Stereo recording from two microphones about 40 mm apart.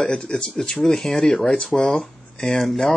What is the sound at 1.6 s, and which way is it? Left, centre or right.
Speech, left.